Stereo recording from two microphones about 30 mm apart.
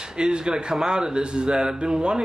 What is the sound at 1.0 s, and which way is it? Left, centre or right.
Speech, right.